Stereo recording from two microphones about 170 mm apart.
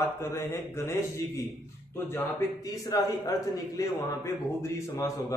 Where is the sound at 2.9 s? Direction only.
20° left (ahead or behind).